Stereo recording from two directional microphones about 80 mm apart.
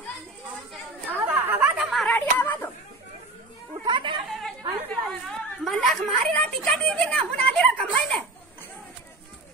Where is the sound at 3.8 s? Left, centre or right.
Right.